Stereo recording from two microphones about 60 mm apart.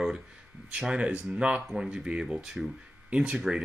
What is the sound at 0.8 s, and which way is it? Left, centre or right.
Speech, centre.